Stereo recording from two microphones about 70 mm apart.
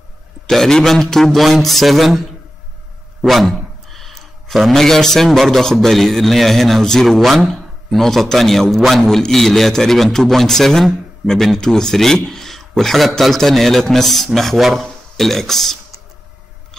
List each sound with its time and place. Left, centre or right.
0.5 s a man's voice: centre